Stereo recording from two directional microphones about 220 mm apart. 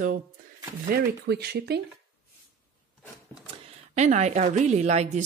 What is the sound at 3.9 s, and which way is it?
A woman's voice, 30° right (ahead or behind).